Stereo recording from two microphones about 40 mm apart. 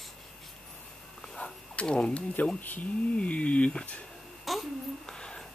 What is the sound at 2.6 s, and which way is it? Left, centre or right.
Speech, left.